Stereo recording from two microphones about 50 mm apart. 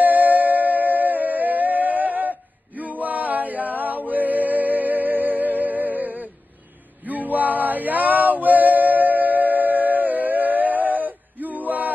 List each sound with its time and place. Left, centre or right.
0.0 s music: right
7.1 s male singing: right